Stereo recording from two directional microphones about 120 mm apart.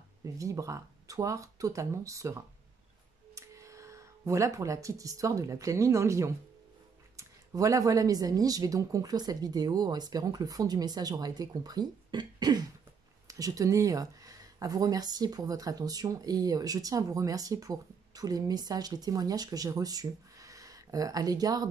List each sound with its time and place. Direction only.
0.2 s speech: 25° right (ahead or behind)